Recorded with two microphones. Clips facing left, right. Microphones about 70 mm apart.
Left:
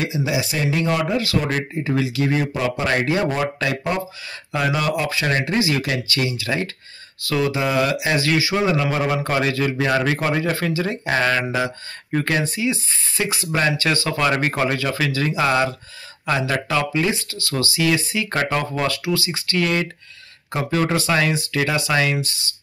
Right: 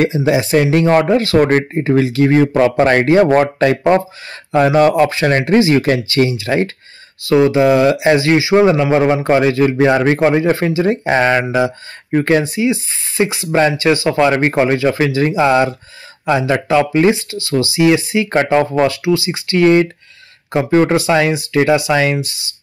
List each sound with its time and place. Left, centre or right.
0.0 s speech: right
19.6 s speech: right